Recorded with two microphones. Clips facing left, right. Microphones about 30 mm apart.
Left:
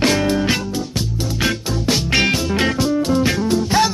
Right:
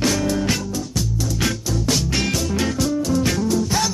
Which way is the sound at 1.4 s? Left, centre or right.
Left.